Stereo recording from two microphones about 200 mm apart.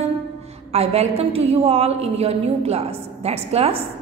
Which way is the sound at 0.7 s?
30° right (ahead or behind).